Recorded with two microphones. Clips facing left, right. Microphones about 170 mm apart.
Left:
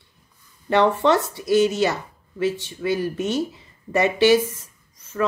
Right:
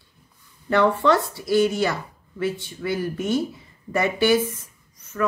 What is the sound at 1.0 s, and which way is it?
Speech, 20° left (ahead or behind).